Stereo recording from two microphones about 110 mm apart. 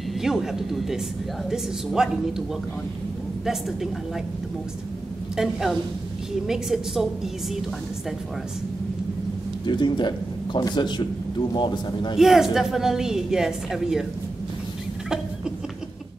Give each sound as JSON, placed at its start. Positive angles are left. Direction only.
{"t": 0.2, "sound": "speech", "side_deg": -5}
{"t": 3.4, "sound": "speech", "side_deg": -5}
{"t": 5.3, "sound": "speech", "side_deg": -5}
{"t": 9.7, "sound": "speech", "side_deg": 45}
{"t": 12.2, "sound": "speech", "side_deg": -5}